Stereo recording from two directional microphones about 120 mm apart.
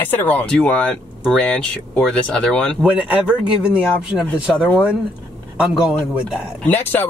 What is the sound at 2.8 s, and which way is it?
Speech, 10° right (ahead or behind).